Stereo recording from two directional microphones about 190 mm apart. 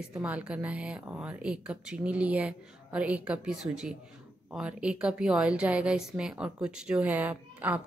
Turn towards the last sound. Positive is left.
turn(degrees=-10)  # may be behind; listen again after turning